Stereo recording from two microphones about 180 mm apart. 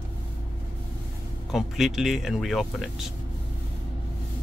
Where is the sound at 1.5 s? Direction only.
Centre (ahead or behind).